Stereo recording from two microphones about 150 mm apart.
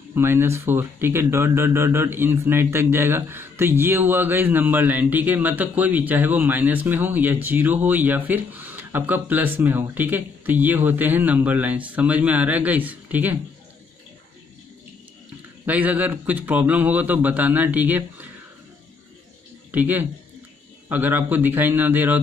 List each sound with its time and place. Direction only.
0.1 s speech: 15° right (ahead or behind)
15.6 s speech: 10° right (ahead or behind)
19.7 s speech: 10° right (ahead or behind)